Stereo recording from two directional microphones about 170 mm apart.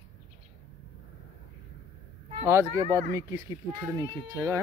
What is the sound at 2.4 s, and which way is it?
Speech, 15° right (ahead or behind).